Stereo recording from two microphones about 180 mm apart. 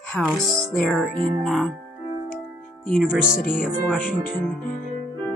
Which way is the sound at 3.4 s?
50° left (ahead or behind).